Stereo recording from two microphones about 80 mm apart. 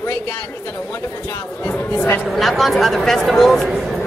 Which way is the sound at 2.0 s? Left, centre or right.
Left.